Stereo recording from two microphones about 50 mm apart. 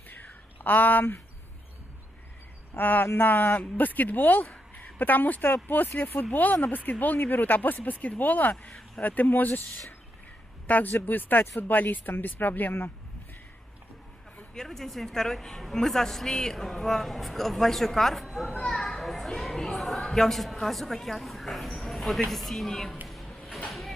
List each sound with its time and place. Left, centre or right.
0.1 s a sound: left
2.7 s speech: left
14.5 s a woman's voice: centre
18.7 s children playing: centre
20.5 s a woman's voice: centre
23.0 s a sound: centre